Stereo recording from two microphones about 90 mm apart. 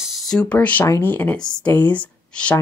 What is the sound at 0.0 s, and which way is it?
Speech, centre (ahead or behind).